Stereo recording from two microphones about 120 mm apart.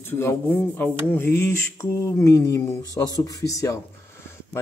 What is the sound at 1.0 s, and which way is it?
Mantra, 20° left (ahead or behind).